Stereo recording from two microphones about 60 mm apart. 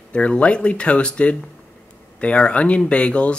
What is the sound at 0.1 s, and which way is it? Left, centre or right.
Speech, centre.